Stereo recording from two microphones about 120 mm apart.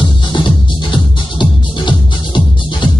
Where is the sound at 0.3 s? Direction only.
40° left (ahead or behind).